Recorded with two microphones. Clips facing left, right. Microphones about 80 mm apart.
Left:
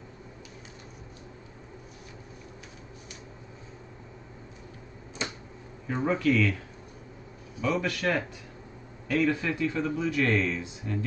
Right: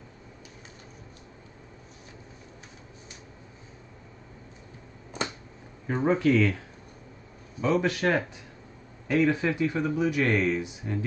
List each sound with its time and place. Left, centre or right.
5.9 s speech: right
7.6 s speech: right